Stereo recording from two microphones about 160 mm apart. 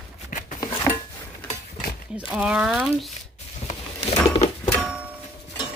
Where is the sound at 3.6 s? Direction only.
45° left (ahead or behind).